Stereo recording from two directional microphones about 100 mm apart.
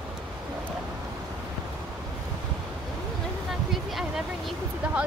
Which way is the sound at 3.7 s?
Centre (ahead or behind).